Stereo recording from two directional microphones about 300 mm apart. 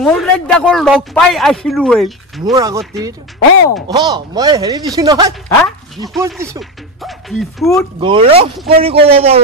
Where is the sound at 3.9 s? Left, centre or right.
Centre.